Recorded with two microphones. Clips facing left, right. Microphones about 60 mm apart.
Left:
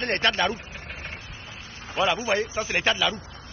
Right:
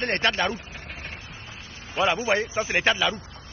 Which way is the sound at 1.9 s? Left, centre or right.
Right.